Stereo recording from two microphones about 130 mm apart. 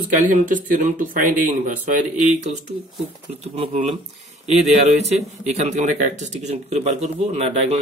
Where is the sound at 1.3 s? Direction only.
80° right.